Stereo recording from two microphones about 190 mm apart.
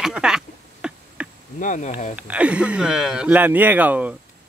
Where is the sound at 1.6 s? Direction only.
40° left (ahead or behind).